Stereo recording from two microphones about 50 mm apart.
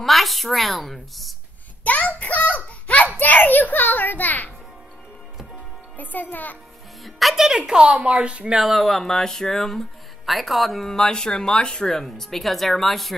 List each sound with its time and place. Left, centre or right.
0.0 s speech: centre
1.9 s a child's voice: left
5.9 s a child's voice: left
7.0 s speech: centre
7.4 s speech: centre
8.5 s speech: centre